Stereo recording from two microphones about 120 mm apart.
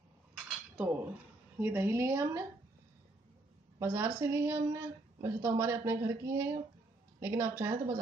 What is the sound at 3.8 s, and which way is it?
A woman's voice, 25° right (ahead or behind).